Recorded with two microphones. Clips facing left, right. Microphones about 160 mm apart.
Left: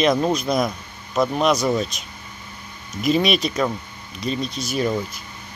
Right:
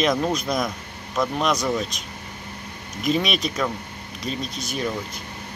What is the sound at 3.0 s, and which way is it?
Speech, centre (ahead or behind).